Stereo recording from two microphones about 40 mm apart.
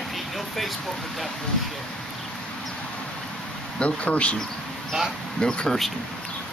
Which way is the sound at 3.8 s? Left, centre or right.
Left.